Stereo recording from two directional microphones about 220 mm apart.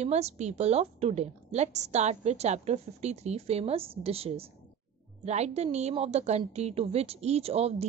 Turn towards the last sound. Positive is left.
turn(degrees=-30)  # may be behind; listen again after turning